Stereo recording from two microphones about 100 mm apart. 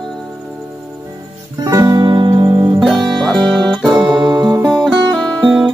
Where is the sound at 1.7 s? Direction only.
40° right (ahead or behind); by 2.7 s 55° right (ahead or behind).